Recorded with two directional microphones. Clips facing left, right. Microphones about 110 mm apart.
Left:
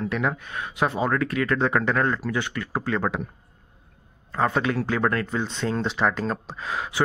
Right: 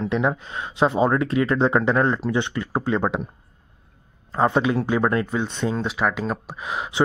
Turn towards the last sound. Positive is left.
turn(degrees=-20)  # may be behind; listen again after turning